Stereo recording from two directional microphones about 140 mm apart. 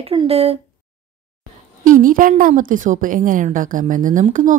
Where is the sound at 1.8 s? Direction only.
75° right (ahead or behind).